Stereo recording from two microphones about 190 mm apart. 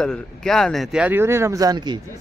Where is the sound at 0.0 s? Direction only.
5° left (ahead or behind); by 2.0 s 20° right (ahead or behind).